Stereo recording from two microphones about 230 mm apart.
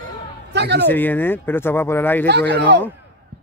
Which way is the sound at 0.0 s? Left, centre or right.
Right.